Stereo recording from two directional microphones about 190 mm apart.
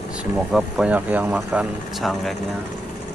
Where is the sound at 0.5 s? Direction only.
5° right (ahead or behind).